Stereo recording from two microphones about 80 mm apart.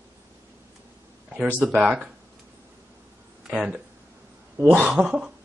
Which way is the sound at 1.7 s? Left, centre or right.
Centre.